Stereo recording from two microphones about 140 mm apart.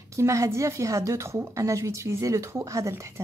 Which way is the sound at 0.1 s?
20° right (ahead or behind).